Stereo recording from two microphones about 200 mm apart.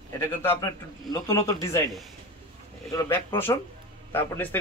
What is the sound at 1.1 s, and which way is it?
Speech, 15° left (ahead or behind).